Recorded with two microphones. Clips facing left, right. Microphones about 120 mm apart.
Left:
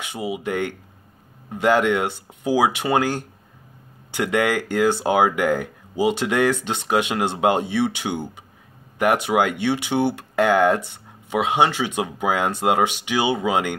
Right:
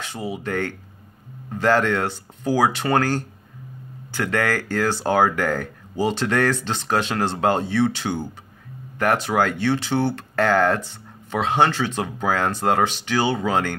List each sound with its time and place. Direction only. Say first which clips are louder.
0.0 s speech: left 2 dB; 15° left (ahead or behind)